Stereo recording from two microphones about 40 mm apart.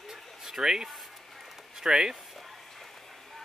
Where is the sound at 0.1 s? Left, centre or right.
Centre.